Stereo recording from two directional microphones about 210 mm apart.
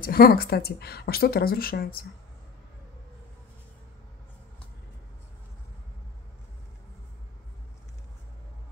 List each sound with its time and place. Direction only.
0.0 s a woman's voice: 45° left (ahead or behind)